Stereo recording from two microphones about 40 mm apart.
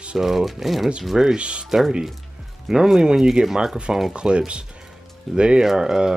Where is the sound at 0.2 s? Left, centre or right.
Centre.